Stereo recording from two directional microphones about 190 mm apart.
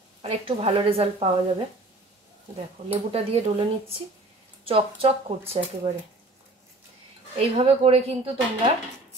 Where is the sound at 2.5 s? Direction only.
30° right (ahead or behind).